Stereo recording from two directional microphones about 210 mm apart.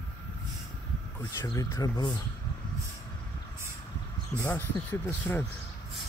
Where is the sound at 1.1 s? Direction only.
15° left (ahead or behind).